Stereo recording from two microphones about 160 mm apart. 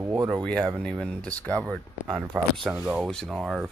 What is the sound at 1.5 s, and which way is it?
Speech, 20° right (ahead or behind).